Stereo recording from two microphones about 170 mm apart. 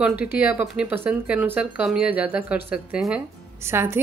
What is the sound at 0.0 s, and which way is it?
A woman's voice, 5° right (ahead or behind).